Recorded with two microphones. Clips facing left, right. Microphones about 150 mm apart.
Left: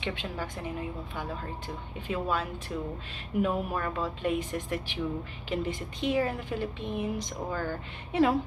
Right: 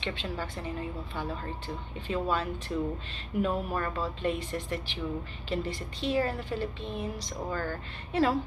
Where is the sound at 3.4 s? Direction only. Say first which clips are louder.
Left 1 dB; 5° left (ahead or behind).